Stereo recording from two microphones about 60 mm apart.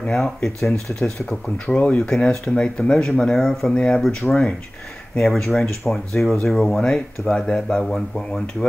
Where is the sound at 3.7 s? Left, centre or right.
Centre.